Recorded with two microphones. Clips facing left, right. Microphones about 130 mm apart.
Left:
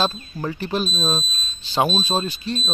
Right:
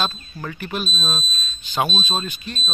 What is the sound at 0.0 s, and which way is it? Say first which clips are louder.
Speech: left 3 dB; 30° left (ahead or behind).